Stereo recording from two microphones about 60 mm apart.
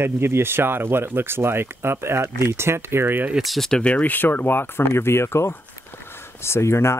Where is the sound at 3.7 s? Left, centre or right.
Centre; by 6.9 s left.